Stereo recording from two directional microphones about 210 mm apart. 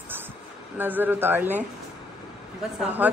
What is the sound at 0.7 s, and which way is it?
Speech, 10° right (ahead or behind).